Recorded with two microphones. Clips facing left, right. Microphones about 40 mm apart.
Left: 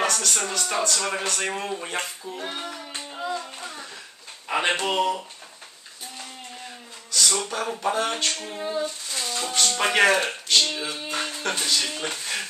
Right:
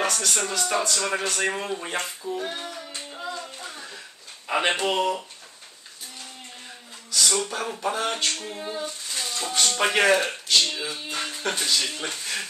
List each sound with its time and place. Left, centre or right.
0.0 s speech: centre
2.3 s child singing: left
3.1 s hands: centre
3.6 s a sound: centre
4.6 s speech: centre
7.1 s speech: centre
8.3 s a sound: centre
9.7 s speech: centre
10.9 s music: centre
12.0 s speech: centre